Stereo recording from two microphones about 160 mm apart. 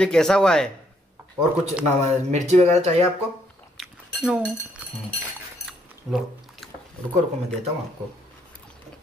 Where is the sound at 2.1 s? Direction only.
45° right (ahead or behind).